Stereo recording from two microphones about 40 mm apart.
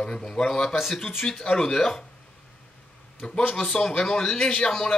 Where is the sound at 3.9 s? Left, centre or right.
Centre.